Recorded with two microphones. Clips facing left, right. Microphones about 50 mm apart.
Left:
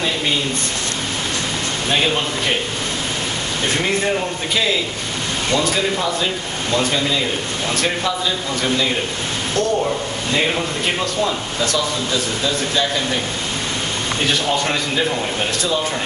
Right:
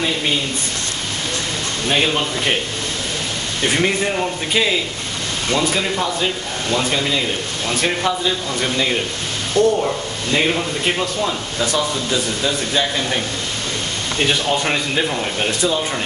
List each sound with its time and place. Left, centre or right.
1.9 s speech: centre
3.6 s speech: centre
5.6 s speech: centre
9.6 s speech: centre
10.5 s speech: centre